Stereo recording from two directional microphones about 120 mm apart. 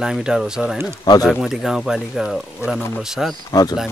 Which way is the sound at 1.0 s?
35° left (ahead or behind).